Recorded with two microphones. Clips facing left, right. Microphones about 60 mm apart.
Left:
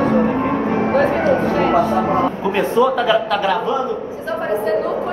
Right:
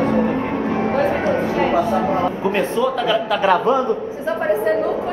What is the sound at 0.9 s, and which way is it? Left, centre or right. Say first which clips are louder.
Music: left 3 dB; centre.